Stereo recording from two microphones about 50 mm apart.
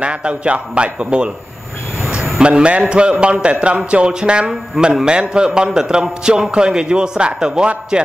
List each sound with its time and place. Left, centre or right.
0.0 s a man's voice: right
2.4 s a man's voice: right